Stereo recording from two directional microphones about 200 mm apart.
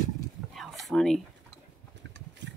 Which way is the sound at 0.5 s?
Centre (ahead or behind).